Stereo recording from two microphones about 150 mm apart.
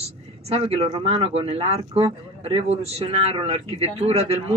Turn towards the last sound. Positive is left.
turn(degrees=-40)  # may be behind; listen again after turning